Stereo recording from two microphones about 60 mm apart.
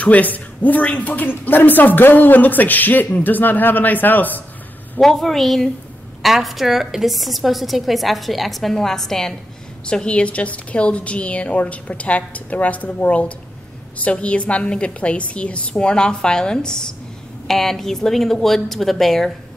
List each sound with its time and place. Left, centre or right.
0.0 s a woman's voice: left
5.0 s a woman's voice: centre
9.8 s a woman's voice: centre